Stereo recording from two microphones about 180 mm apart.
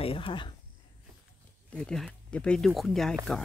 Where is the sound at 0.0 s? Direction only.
30° left (ahead or behind).